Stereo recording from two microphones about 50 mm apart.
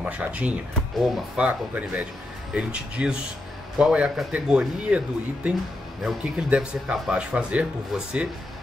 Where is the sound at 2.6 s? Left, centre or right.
Right.